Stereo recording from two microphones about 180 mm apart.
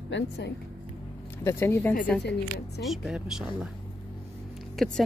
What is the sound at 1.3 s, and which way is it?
Speech, 15° left (ahead or behind).